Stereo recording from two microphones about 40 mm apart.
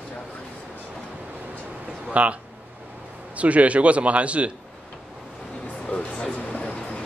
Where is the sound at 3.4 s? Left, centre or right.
Right.